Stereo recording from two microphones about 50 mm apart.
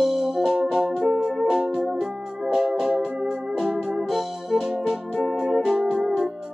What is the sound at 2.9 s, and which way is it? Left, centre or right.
Organ, centre.